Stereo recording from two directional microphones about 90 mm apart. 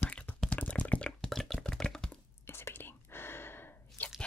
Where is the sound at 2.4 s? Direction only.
25° left (ahead or behind).